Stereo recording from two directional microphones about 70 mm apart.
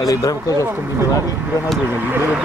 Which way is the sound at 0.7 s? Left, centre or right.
Right.